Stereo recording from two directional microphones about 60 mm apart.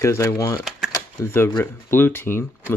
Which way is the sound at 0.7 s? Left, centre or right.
Centre.